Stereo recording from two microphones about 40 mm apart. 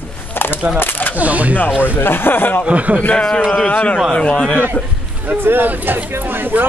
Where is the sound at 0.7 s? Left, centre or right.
Left.